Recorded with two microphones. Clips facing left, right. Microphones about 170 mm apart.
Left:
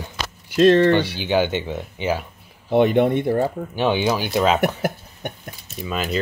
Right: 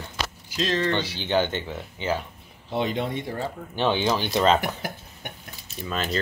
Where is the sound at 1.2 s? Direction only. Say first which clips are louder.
Left 4 dB; 10° left (ahead or behind).